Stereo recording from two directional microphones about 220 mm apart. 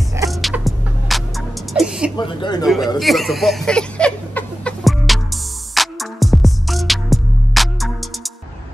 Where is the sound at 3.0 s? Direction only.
Centre (ahead or behind).